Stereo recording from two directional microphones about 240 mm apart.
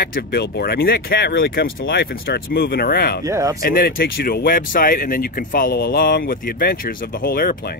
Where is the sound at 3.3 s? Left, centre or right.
Centre.